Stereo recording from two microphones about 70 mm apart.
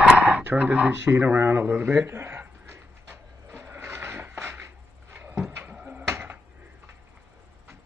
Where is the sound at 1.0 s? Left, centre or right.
Right.